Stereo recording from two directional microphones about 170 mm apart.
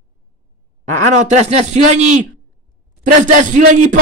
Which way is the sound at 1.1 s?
45° right (ahead or behind).